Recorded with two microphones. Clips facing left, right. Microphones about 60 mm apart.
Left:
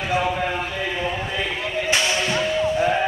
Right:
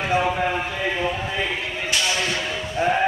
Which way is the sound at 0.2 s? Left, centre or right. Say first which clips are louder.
Right 1 dB; centre.